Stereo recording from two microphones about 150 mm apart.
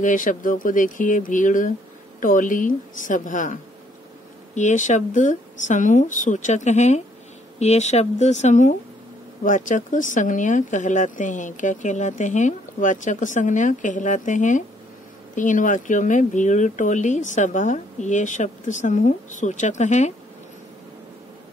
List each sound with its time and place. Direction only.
0.0 s speech: 60° left (ahead or behind)
4.6 s speech: 55° left (ahead or behind)